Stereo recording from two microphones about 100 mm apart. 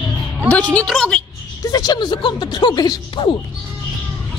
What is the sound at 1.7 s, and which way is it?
Speech, 40° left (ahead or behind).